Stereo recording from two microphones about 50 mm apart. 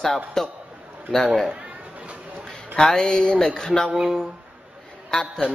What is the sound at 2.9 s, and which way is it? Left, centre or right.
Speech, centre.